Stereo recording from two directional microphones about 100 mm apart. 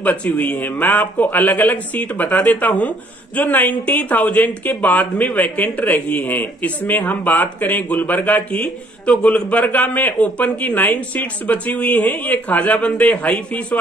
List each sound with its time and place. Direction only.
0.0 s speech: 15° left (ahead or behind)